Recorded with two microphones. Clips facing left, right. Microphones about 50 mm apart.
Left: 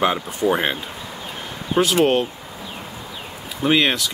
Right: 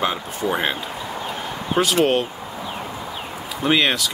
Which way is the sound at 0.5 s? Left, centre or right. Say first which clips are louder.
Left 2 dB; centre.